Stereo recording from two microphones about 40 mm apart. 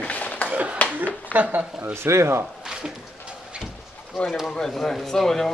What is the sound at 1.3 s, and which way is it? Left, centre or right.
Speech, left.